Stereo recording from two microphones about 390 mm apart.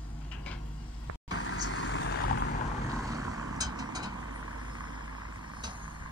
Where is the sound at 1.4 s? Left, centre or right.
Left.